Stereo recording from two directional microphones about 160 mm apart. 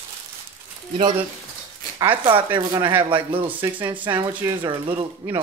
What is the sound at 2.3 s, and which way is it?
Speech, 30° right (ahead or behind).